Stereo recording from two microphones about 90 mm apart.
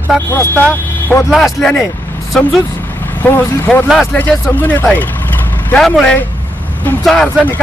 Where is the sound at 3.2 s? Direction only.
20° left (ahead or behind).